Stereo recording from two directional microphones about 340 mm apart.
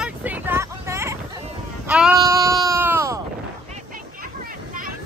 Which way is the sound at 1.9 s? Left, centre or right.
Centre.